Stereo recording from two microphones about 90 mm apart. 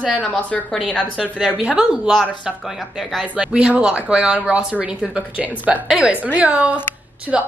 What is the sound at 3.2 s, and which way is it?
A woman's voice, 10° right (ahead or behind).